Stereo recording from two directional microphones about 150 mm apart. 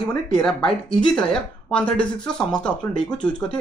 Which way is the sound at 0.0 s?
5° left (ahead or behind).